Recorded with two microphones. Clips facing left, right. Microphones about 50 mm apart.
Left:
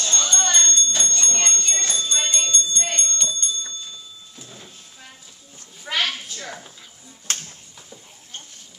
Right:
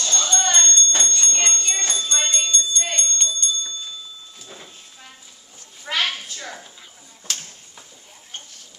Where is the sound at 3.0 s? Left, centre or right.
Left.